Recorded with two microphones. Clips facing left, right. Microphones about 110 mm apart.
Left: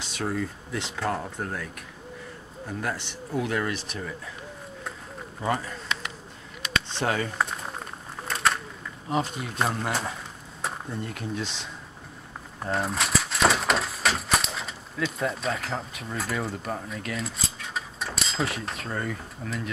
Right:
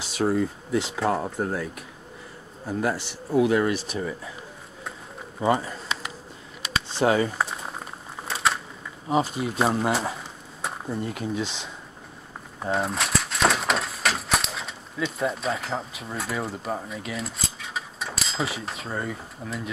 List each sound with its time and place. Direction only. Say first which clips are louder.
0.2 s speech: right 6 dB; 20° right (ahead or behind)
0.7 s speech: right 5 dB; centre (ahead or behind)
1.2 s speech: right 6 dB; 15° right (ahead or behind)
3.7 s speech: right 5 dB; 5° right (ahead or behind)
5.7 s a sound: right 1 dB; 5° right (ahead or behind)
9.1 s speech: right 4 dB; 5° right (ahead or behind)